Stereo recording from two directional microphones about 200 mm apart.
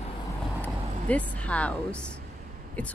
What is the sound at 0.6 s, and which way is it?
Speech, 5° left (ahead or behind).